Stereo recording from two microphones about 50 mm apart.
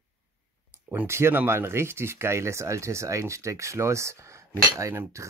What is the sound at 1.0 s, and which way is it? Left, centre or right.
Speech, right.